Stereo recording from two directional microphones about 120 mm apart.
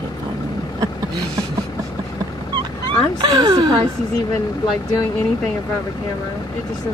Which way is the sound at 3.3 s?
35° right (ahead or behind).